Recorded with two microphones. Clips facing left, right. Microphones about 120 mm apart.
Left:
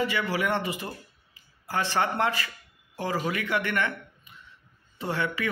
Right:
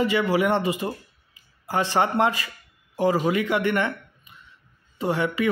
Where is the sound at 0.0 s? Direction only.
20° right (ahead or behind).